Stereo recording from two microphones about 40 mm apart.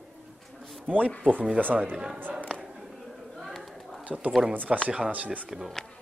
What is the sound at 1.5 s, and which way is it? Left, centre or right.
Speech, right.